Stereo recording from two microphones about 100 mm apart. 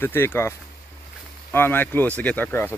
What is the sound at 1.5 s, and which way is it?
Speech, 20° left (ahead or behind).